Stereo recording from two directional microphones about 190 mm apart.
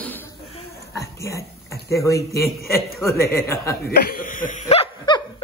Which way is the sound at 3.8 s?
55° left (ahead or behind).